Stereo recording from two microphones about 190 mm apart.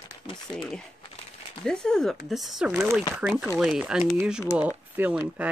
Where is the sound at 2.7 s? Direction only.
15° right (ahead or behind).